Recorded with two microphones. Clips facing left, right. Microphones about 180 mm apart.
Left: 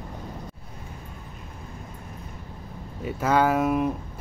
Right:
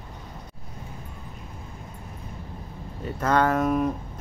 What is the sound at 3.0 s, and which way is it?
Speech, 10° left (ahead or behind).